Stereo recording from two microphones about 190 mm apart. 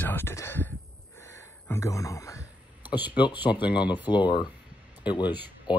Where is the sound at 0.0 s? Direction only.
10° left (ahead or behind).